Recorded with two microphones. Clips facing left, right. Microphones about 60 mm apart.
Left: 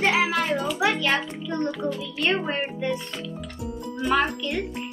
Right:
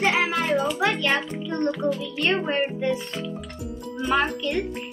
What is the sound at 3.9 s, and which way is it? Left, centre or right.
Speech, centre.